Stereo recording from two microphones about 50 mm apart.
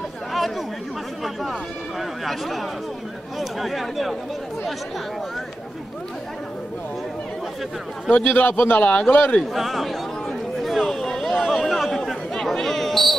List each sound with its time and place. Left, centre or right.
2.0 s a sound: centre
3.3 s speech: centre
8.1 s a man's voice: left
9.4 s speech: centre
10.6 s a sound: centre
12.1 s chatter: centre